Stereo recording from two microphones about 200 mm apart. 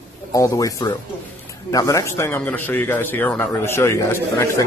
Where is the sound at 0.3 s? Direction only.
15° left (ahead or behind).